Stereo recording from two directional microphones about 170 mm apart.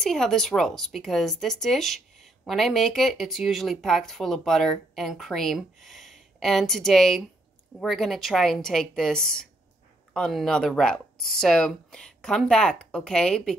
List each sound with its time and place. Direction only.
0.0 s speech: 5° left (ahead or behind)